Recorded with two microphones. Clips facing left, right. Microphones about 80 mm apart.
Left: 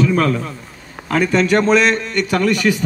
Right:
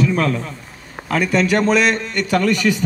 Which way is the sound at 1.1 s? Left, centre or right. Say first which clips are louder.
Left 2 dB; left.